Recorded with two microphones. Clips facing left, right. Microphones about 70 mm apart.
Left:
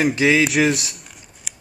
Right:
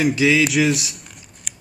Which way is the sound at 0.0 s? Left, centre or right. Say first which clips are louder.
Even; left.